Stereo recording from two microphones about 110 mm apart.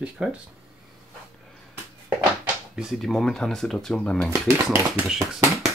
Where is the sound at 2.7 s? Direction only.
Centre (ahead or behind).